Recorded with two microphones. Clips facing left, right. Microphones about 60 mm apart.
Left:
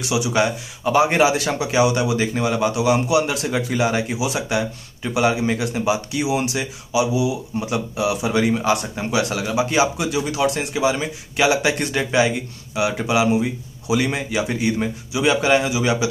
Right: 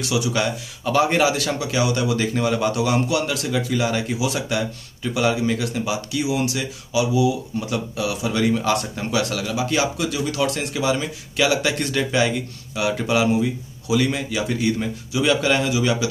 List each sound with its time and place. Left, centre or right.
0.0 s speech: centre
13.4 s speech: left